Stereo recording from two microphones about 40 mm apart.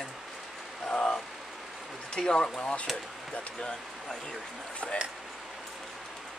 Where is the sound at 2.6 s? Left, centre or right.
Left.